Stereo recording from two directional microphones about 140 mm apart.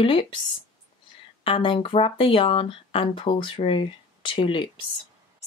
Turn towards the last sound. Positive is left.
turn(degrees=35)  # may be behind; listen again after turning